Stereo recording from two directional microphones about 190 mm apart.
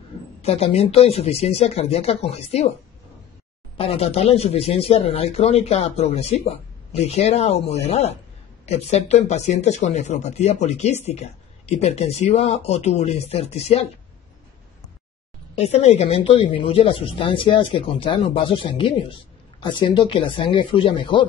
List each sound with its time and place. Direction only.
0.4 s speech: 30° left (ahead or behind)
3.7 s speech: 30° left (ahead or behind)
15.5 s speech: 35° left (ahead or behind)